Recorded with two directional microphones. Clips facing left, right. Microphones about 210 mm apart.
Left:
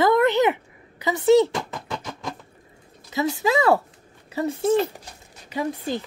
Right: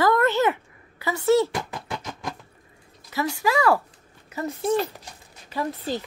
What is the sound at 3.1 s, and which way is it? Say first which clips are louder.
Speech: left 2 dB; 20° left (ahead or behind).